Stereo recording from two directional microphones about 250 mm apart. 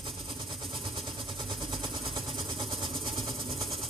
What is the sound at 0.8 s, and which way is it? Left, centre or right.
Vehicle, centre.